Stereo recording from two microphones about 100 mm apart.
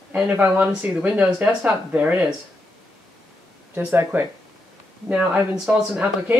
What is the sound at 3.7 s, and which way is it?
A woman's voice, 20° right (ahead or behind).